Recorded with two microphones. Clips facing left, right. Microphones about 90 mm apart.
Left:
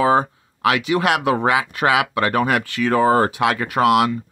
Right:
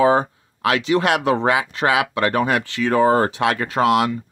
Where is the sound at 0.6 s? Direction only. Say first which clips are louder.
Even; 30° right (ahead or behind).